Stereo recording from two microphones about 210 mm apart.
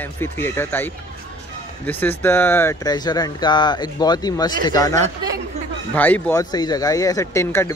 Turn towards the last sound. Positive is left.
turn(degrees=10)  # may be behind; listen again after turning